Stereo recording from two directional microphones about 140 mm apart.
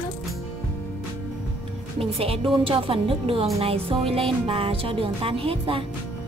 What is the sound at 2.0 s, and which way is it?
Music, 45° right (ahead or behind).